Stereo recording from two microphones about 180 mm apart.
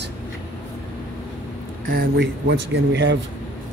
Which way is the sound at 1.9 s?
65° right (ahead or behind).